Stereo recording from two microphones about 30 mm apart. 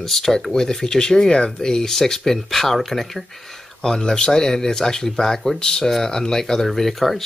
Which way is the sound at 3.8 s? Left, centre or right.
Left.